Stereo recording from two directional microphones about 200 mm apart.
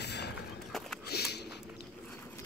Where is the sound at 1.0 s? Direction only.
55° left (ahead or behind).